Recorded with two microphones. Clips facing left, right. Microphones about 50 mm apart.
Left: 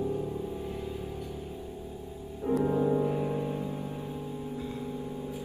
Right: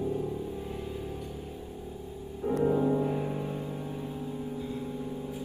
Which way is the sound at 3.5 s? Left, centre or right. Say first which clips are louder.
Left 2 dB; left.